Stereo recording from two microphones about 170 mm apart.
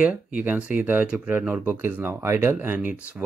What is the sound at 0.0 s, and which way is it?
Speech, 5° right (ahead or behind).